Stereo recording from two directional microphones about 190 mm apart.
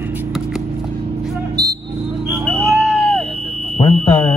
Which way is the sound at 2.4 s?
Centre (ahead or behind).